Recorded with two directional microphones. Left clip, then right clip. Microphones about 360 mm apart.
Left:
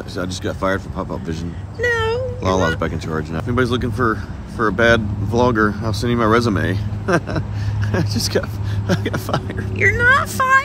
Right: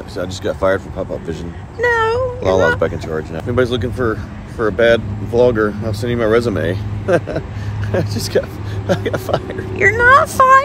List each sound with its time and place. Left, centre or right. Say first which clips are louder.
0.1 s speech: right 4 dB; centre
1.8 s a sound: right 4 dB; centre
2.4 s speech: right 5 dB; centre
9.8 s speech: right 4 dB; centre